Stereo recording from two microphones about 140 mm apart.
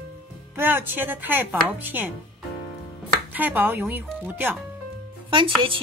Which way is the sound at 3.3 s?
10° right (ahead or behind).